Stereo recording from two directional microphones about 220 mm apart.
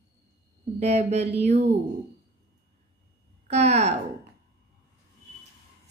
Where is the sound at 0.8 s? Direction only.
30° right (ahead or behind).